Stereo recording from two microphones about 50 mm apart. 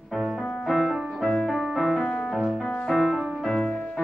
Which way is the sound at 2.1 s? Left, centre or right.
Centre.